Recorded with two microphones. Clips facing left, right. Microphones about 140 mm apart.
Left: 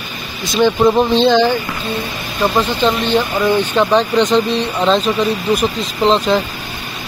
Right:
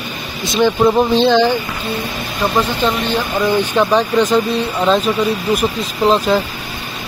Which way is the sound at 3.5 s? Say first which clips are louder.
Even; 10° right (ahead or behind).